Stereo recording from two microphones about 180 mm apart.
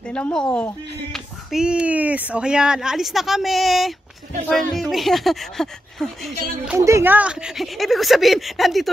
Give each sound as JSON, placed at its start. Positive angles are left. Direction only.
{"t": 0.1, "sound": "speech", "side_deg": 5}
{"t": 6.8, "sound": "speech", "side_deg": -15}